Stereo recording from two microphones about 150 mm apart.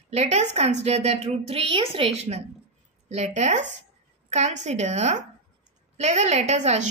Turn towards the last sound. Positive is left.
turn(degrees=-50)  # may be behind; listen again after turning